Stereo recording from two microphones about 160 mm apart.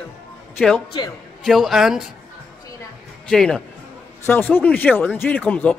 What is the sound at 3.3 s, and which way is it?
A man's voice, 5° left (ahead or behind).